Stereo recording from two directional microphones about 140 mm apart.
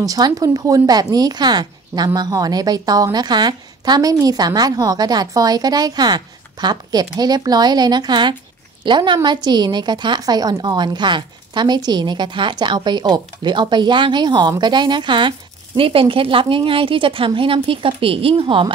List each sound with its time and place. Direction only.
0.0 s a woman's voice: 25° right (ahead or behind)